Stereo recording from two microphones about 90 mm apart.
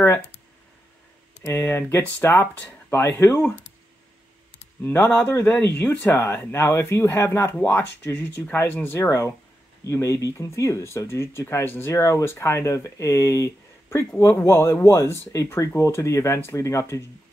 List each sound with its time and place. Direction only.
1.4 s speech: 30° left (ahead or behind)
4.8 s speech: 25° left (ahead or behind)
7.5 s speech: 15° left (ahead or behind); by 17.0 s 35° left (ahead or behind)